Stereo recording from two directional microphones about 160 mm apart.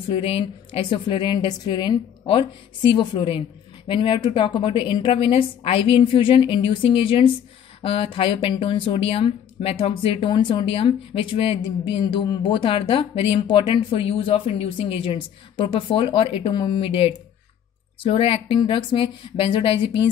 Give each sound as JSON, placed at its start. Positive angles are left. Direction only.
{"t": 0.1, "sound": "speech", "side_deg": 35}